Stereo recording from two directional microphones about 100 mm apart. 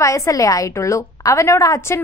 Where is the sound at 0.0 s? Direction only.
30° left (ahead or behind).